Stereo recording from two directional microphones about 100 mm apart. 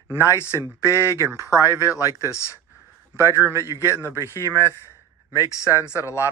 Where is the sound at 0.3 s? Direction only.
25° left (ahead or behind).